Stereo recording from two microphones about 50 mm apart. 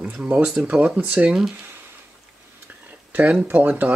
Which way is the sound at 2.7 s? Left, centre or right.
Right.